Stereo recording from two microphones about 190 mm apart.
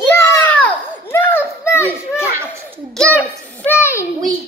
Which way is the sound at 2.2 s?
10° right (ahead or behind).